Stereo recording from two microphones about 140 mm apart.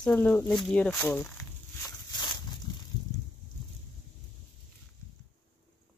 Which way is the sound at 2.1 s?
30° left (ahead or behind).